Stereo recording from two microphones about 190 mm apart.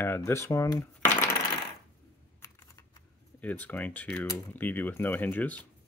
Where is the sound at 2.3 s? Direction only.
15° left (ahead or behind).